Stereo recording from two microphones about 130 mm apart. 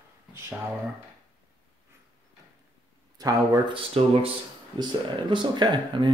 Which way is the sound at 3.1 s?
30° right (ahead or behind).